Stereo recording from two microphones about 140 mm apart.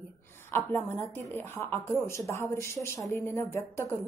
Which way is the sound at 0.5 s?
15° left (ahead or behind).